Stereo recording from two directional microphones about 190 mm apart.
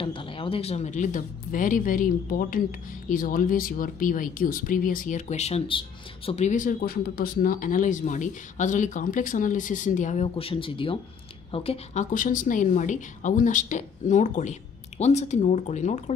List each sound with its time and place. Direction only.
0.0 s a woman's voice: 25° left (ahead or behind)